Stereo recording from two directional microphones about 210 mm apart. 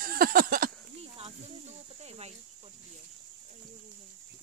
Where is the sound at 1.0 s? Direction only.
30° right (ahead or behind).